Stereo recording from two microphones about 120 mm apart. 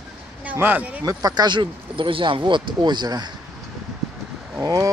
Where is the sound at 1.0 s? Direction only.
30° right (ahead or behind).